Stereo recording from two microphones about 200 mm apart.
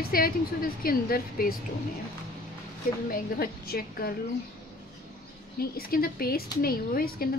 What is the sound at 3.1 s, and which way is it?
A woman's voice, 50° left (ahead or behind).